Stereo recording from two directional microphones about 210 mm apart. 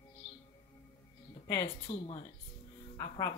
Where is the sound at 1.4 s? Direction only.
15° left (ahead or behind).